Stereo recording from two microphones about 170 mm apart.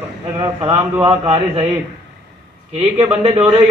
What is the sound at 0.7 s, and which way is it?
Speech, 10° right (ahead or behind).